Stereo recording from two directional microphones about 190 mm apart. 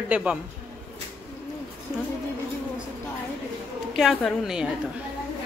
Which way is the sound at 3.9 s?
Centre (ahead or behind).